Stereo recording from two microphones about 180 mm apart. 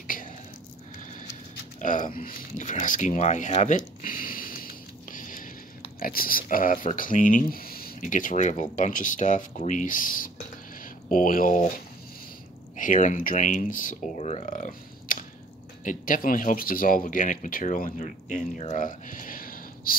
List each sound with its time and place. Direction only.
0.0 s whispering: 50° left (ahead or behind)
1.8 s a sound: 45° left (ahead or behind)
5.9 s speech: 55° left (ahead or behind)